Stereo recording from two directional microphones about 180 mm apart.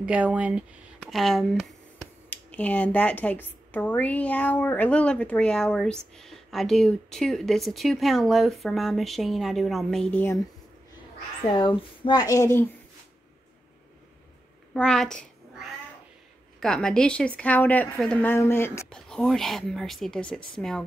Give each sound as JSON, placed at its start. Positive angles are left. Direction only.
{"t": 0.0, "sound": "speech", "side_deg": -5}
{"t": 11.4, "sound": "speech", "side_deg": 25}
{"t": 14.7, "sound": "speech", "side_deg": 0}
{"t": 16.5, "sound": "speech", "side_deg": 5}